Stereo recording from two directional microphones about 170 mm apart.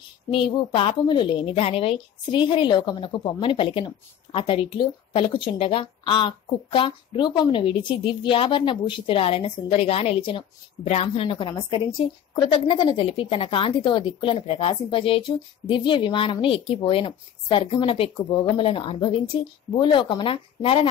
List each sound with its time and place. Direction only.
0.3 s a woman's voice: 30° left (ahead or behind)
11.2 s a woman's voice: 30° left (ahead or behind)